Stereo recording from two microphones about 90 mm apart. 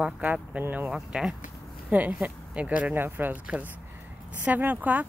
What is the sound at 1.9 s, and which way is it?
Speech, 15° right (ahead or behind).